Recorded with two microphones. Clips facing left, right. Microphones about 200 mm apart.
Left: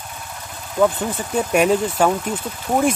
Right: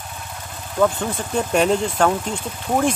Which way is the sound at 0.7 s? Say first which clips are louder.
Left 1 dB; 5° left (ahead or behind).